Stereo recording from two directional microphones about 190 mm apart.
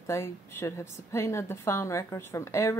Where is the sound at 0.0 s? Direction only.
15° left (ahead or behind).